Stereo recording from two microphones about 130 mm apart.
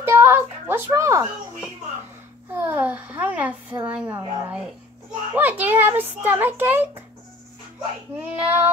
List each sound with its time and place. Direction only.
0.0 s a sound: 20° right (ahead or behind)
2.5 s a child's voice: 15° right (ahead or behind)
8.2 s a child's voice: 10° right (ahead or behind)